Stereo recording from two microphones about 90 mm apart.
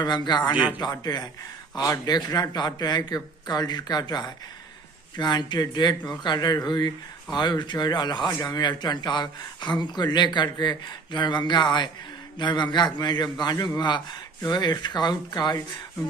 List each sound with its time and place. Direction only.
0.0 s speech: 55° left (ahead or behind)